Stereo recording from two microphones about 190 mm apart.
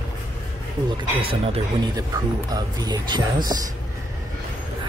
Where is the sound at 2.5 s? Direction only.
20° right (ahead or behind).